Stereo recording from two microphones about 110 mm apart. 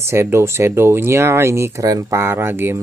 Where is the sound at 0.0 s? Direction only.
25° right (ahead or behind).